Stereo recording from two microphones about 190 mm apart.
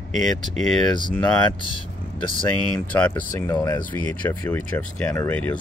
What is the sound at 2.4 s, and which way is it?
Speech, 10° left (ahead or behind).